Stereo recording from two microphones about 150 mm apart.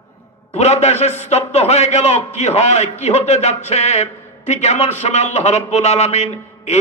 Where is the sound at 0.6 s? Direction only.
45° left (ahead or behind).